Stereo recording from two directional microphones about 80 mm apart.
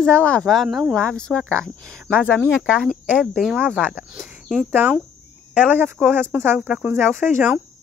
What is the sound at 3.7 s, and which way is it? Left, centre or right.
Speech, centre.